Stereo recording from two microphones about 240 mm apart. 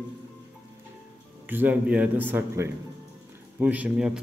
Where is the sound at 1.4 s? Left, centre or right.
Centre.